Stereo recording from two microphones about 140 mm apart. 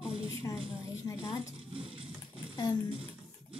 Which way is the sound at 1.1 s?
20° left (ahead or behind).